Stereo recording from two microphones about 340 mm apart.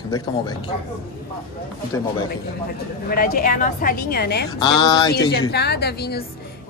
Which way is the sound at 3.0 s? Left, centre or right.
Left.